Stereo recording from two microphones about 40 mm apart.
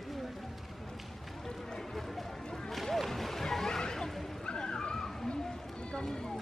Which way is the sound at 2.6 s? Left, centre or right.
Centre.